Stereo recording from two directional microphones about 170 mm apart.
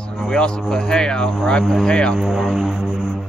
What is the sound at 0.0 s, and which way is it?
Speech, 5° left (ahead or behind).